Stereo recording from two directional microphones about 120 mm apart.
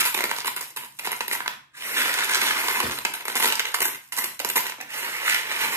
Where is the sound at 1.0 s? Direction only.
20° right (ahead or behind).